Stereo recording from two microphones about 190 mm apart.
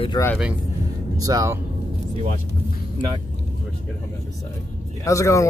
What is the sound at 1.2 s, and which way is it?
Speech, 20° right (ahead or behind).